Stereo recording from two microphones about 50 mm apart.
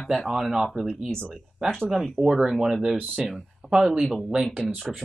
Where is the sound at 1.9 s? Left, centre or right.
Centre.